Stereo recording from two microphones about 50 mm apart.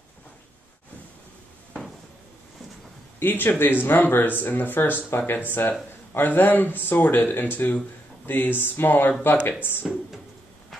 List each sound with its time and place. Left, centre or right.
3.2 s speech: left